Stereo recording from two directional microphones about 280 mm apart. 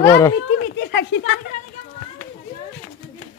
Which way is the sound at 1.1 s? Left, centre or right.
Left.